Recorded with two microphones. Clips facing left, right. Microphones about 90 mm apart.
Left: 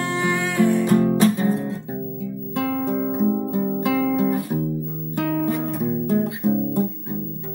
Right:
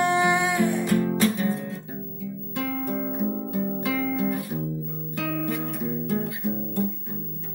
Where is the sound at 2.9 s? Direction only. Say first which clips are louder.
Left 6 dB; 25° left (ahead or behind).